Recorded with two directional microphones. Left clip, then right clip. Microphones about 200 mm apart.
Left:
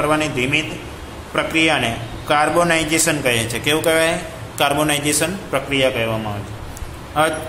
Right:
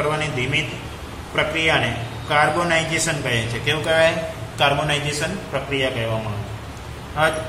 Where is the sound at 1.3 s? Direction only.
55° left (ahead or behind).